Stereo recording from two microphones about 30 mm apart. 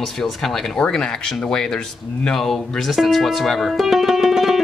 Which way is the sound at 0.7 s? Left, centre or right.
Left.